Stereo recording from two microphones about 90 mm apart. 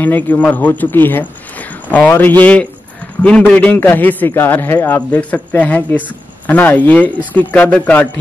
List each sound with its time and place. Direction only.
0.0 s a man's voice: 20° left (ahead or behind)